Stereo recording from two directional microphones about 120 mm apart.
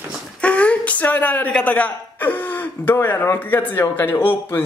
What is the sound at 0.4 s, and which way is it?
A woman's voice, 10° left (ahead or behind).